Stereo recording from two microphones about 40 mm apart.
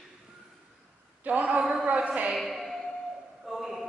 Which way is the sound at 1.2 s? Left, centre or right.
Right.